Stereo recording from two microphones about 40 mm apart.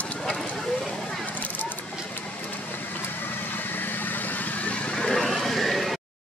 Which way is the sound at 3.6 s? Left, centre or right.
Left.